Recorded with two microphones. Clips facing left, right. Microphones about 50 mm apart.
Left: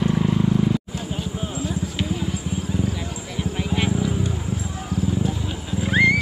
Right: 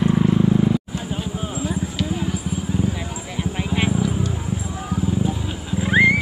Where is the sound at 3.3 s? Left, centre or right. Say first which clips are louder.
Right 1 dB; centre.